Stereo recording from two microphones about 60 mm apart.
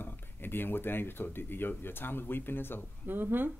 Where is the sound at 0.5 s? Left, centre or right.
Left.